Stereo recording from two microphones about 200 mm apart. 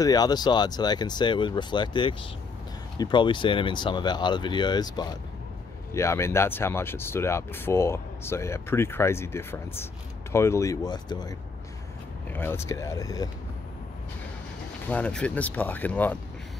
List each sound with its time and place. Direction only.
0.0 s speech: 20° left (ahead or behind)
12.3 s speech: 10° left (ahead or behind)
14.9 s speech: 5° left (ahead or behind)